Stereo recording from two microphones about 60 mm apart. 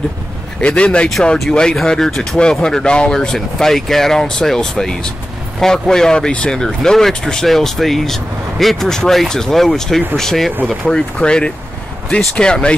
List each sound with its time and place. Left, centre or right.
0.6 s speech: centre